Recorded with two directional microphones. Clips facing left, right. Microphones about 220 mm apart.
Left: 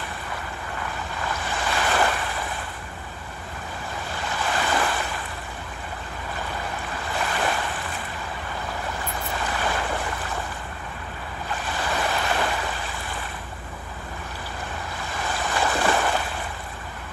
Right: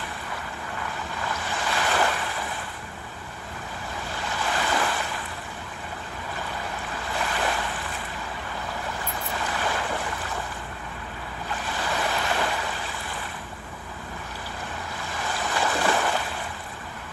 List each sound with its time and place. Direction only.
1.3 s waves: 50° left (ahead or behind)
4.2 s waves: 50° left (ahead or behind)
7.1 s waves: 55° left (ahead or behind)
9.4 s boat: 50° left (ahead or behind)
11.6 s waves: 55° left (ahead or behind)
15.1 s waves: 55° left (ahead or behind)